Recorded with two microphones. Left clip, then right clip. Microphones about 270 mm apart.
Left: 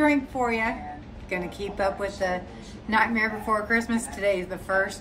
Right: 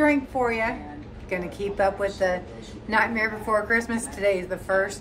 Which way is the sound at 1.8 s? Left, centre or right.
Centre.